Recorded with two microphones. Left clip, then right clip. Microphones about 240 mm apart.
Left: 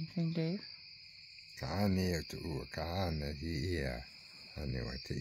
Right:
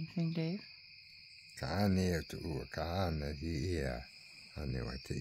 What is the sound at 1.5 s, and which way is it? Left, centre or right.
Speech, right.